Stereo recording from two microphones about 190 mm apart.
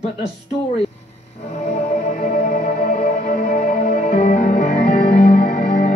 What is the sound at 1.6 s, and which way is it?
Music, 40° left (ahead or behind).